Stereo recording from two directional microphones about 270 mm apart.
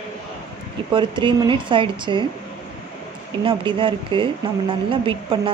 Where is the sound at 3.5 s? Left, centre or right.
Centre.